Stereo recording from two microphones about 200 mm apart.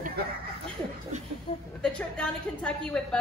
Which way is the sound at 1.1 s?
35° right (ahead or behind).